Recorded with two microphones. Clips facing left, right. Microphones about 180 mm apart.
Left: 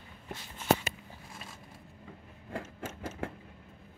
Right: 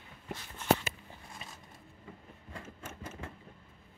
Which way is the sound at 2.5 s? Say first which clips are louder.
Left 7 dB; 70° left (ahead or behind).